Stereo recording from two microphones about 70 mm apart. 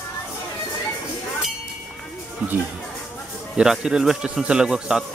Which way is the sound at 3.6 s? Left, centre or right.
Centre.